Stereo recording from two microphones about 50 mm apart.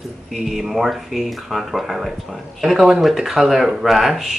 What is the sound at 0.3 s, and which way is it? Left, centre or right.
Speech, centre.